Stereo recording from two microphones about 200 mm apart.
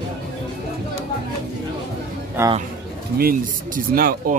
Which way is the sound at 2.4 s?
10° right (ahead or behind).